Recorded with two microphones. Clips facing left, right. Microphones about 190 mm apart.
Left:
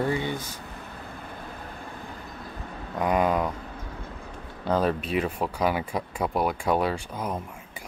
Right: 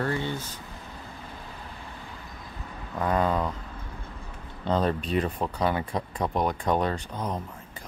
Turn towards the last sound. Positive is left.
turn(degrees=10)  # may be behind; listen again after turning